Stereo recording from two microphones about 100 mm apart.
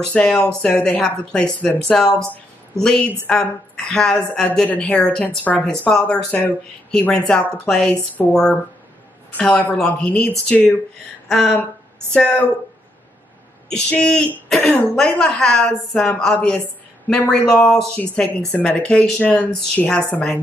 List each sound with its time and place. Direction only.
0.1 s a woman's voice: 10° left (ahead or behind)
13.7 s a woman's voice: 5° left (ahead or behind)
16.3 s a woman's voice: 15° left (ahead or behind)
17.1 s a woman's voice: 5° left (ahead or behind)